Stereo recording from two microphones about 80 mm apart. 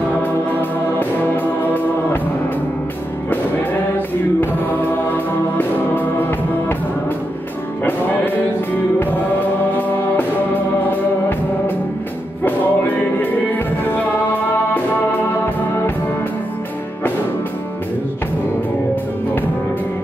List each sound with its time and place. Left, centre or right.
0.2 s music: left
4.4 s music: left
9.0 s music: left